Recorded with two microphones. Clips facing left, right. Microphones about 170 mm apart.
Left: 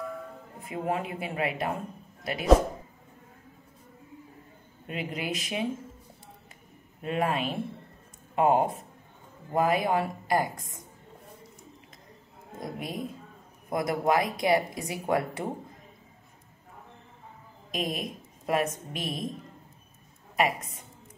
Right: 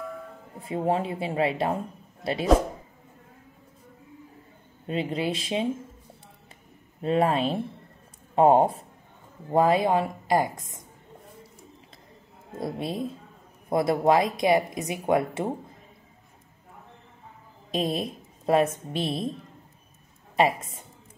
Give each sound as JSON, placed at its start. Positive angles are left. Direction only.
{"t": 0.6, "sound": "speech", "side_deg": -30}
{"t": 4.8, "sound": "speech", "side_deg": -30}
{"t": 7.0, "sound": "speech", "side_deg": -30}
{"t": 12.5, "sound": "speech", "side_deg": -30}
{"t": 17.6, "sound": "a woman's voice", "side_deg": -30}
{"t": 20.3, "sound": "speech", "side_deg": -30}